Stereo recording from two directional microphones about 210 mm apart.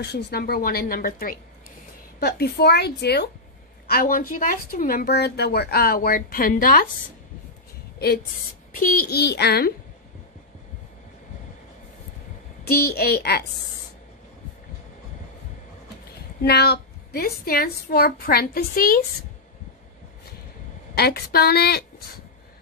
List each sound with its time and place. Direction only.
0.0 s a woman's voice: 50° left (ahead or behind)
8.7 s a child's voice: 40° left (ahead or behind)
12.6 s a woman's voice: 45° left (ahead or behind)
16.4 s a woman's voice: 50° left (ahead or behind)
20.9 s a woman's voice: 50° left (ahead or behind)